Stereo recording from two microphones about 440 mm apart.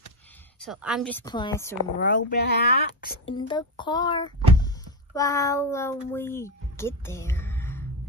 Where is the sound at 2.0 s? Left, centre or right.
Left.